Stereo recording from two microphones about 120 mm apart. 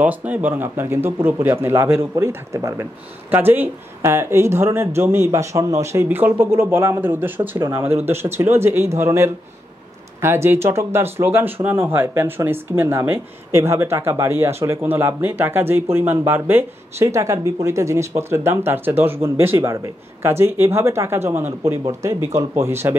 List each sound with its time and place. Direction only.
0.0 s speech: 15° right (ahead or behind)